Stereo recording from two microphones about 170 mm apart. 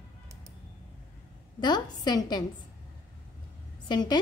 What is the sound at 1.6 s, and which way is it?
Speech, 25° left (ahead or behind).